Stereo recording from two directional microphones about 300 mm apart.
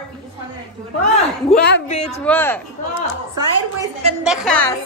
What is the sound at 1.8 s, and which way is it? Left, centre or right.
Speech, left.